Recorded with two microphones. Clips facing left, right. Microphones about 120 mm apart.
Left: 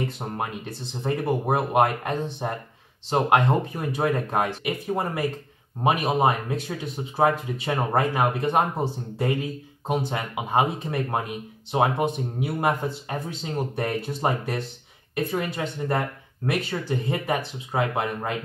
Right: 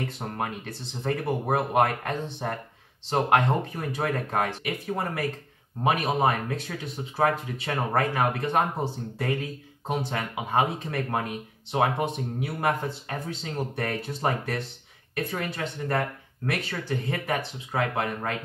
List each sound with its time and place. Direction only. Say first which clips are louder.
0.2 s speech: left 1 dB; 15° left (ahead or behind)